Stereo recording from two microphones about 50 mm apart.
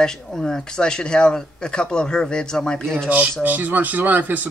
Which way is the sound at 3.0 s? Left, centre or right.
Right.